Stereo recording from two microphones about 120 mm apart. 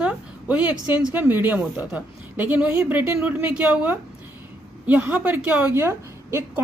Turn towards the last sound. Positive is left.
turn(degrees=-20)  # may be behind; listen again after turning